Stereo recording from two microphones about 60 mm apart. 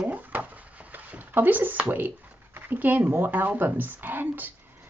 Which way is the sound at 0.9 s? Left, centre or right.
Right.